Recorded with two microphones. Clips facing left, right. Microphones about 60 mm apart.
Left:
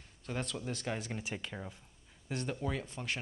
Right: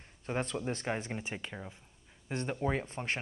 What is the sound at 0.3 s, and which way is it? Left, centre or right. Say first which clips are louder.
Speech: right 4 dB; right.